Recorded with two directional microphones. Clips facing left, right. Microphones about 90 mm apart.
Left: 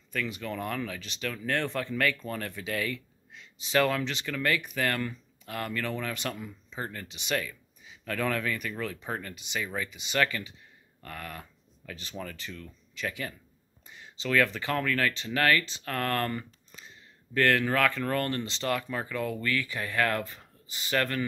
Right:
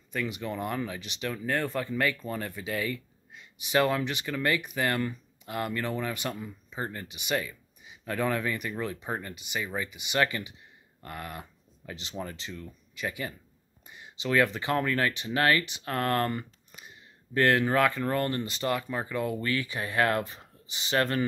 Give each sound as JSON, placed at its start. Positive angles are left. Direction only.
{"t": 0.1, "sound": "speech", "side_deg": -15}